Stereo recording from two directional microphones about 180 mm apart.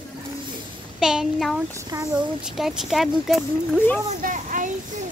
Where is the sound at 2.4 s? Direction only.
Centre (ahead or behind).